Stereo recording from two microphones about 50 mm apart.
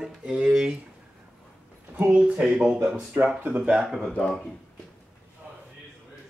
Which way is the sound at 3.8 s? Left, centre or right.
Centre.